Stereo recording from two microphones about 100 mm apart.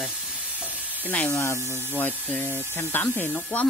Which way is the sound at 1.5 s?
25° right (ahead or behind).